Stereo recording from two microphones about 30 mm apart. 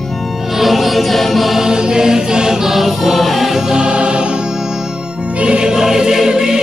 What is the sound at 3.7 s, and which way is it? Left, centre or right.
Music, right.